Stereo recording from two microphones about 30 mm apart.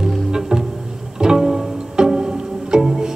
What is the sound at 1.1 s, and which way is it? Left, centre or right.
Pizzicato, right.